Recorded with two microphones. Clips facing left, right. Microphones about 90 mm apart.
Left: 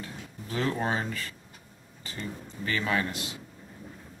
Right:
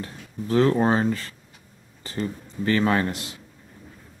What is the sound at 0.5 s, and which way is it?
Speech, 40° right (ahead or behind).